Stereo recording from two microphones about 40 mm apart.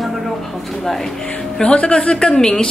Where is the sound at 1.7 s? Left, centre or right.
Left.